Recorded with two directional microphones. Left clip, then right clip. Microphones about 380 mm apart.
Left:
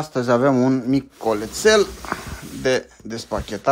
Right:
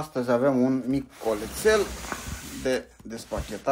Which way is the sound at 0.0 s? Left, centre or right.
Left.